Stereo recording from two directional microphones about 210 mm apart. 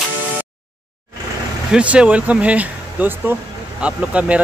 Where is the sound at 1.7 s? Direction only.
5° right (ahead or behind).